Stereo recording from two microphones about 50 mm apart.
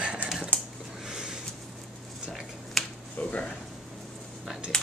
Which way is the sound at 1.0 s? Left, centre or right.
Centre.